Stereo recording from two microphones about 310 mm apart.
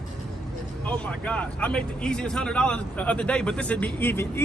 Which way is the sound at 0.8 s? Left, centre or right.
Centre.